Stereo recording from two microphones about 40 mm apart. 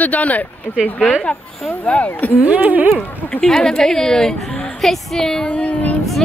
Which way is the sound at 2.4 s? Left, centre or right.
Right.